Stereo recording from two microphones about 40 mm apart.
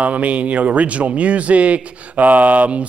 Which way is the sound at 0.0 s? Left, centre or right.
Right.